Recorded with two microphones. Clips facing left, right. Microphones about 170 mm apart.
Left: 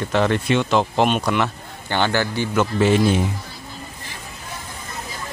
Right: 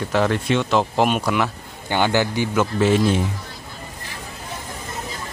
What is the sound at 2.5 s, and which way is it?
Mantra, centre (ahead or behind).